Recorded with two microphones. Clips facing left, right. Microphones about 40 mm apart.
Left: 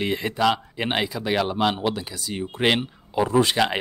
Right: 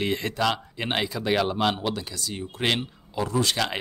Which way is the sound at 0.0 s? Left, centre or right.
Centre.